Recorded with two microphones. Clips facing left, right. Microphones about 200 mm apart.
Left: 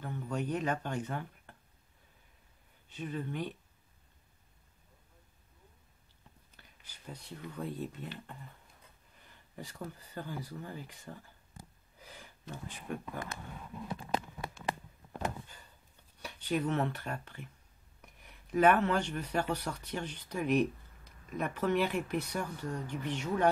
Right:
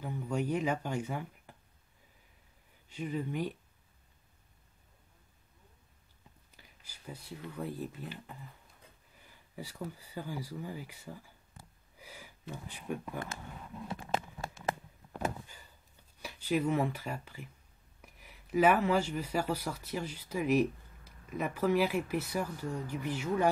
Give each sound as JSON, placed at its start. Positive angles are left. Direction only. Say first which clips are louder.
{"t": 0.0, "sound": "speech", "louder": "right 2 dB", "side_deg": -10}
{"t": 2.9, "sound": "speech", "louder": "right 2 dB", "side_deg": -10}
{"t": 6.5, "sound": "speech", "louder": "right 1 dB", "side_deg": -10}
{"t": 13.8, "sound": "a sound", "louder": "even", "side_deg": -25}
{"t": 16.2, "sound": "speech", "louder": "right 2 dB", "side_deg": -5}